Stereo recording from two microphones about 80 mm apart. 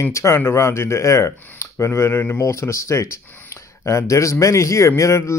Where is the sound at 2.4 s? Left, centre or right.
Left.